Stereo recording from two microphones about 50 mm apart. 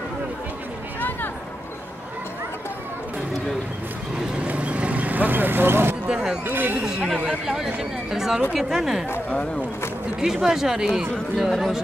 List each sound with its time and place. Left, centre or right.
4.5 s vehicle: right
6.0 s speech: centre
6.4 s speech: right
7.2 s speech: centre
10.2 s speech: centre
11.3 s speech: centre